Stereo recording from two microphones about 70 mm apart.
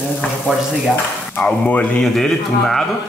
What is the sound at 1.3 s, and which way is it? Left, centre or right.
Speech, left.